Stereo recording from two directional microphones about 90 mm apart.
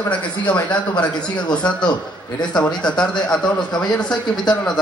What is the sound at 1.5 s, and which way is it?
A man's voice, 10° left (ahead or behind).